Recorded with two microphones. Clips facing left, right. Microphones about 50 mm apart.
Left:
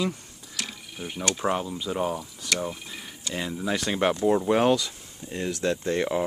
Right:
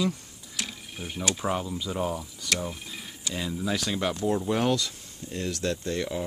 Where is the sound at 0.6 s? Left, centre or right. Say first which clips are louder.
Even; centre.